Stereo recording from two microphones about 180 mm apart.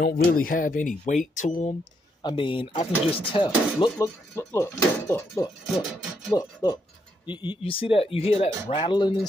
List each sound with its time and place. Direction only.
0.0 s speech: 50° left (ahead or behind)
2.2 s speech: 25° left (ahead or behind)